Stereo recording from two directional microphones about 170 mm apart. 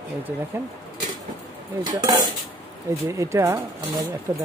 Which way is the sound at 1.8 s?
25° right (ahead or behind).